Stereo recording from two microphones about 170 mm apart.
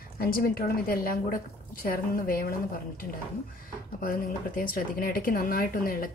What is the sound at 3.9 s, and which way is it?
A woman's voice, 55° left (ahead or behind).